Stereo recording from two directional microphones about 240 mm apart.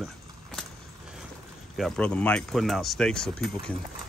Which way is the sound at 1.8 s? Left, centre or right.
Centre.